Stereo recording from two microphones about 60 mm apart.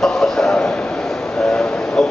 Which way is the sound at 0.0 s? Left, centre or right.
Centre.